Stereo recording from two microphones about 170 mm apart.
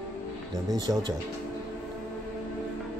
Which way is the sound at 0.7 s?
25° right (ahead or behind).